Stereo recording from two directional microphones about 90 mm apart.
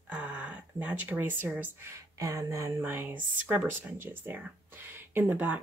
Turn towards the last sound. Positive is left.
turn(degrees=-20)  # may be behind; listen again after turning